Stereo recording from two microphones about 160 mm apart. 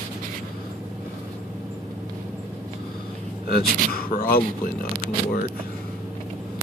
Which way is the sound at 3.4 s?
65° left (ahead or behind).